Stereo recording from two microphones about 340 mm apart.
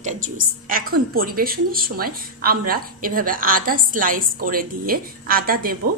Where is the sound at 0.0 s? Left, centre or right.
Right.